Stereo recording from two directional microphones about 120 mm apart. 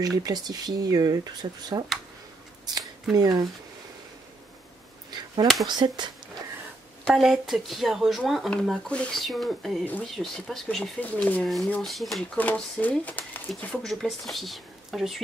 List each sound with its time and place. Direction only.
0.0 s speech: 30° right (ahead or behind)
3.1 s speech: 35° right (ahead or behind)
5.1 s a sound: 35° right (ahead or behind)
5.7 s speech: 40° right (ahead or behind)
7.1 s speech: centre (ahead or behind)
11.0 s speech: 15° left (ahead or behind)
11.8 s speech: centre (ahead or behind)
12.4 s speech: 15° left (ahead or behind)
14.0 s speech: centre (ahead or behind)